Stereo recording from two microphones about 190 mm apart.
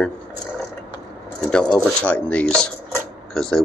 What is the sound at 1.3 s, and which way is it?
Speech, 5° left (ahead or behind).